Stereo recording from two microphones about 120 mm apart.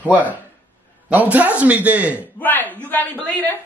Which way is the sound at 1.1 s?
15° right (ahead or behind).